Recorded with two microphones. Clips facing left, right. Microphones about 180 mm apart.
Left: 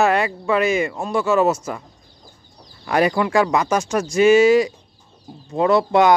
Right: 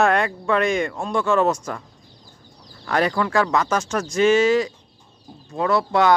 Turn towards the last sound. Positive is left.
turn(degrees=20)  # may be behind; listen again after turning